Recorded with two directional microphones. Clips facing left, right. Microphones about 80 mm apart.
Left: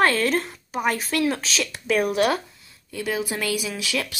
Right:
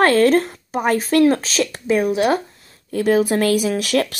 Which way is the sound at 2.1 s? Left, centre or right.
Right.